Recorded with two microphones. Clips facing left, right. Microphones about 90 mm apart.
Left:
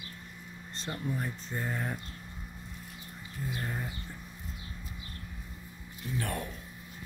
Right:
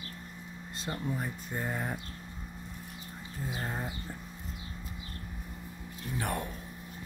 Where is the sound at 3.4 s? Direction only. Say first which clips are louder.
Right 1 dB; 20° right (ahead or behind).